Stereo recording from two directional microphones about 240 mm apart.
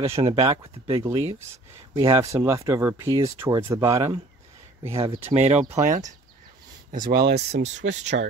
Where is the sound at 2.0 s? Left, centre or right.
Centre.